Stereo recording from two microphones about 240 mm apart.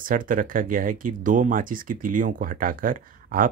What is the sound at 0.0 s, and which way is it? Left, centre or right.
Speech, right.